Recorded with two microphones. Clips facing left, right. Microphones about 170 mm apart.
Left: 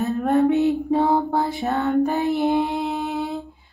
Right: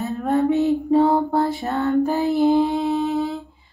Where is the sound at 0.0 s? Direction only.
Centre (ahead or behind).